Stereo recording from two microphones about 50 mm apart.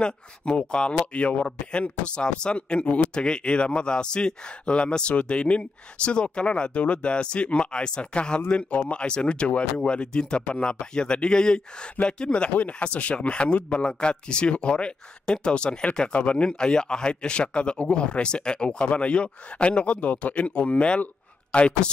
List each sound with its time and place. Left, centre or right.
0.0 s speech: left
16.4 s speech: centre